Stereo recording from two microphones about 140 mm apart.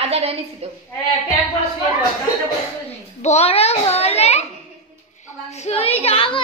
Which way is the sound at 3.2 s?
50° left (ahead or behind).